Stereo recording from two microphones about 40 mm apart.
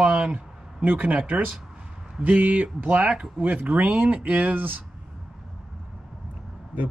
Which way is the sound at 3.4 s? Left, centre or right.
Right.